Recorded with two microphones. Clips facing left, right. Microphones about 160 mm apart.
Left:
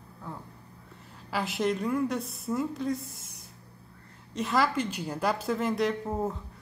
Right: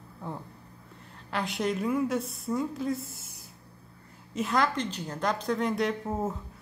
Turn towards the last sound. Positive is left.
turn(degrees=0)  # may be behind; listen again after turning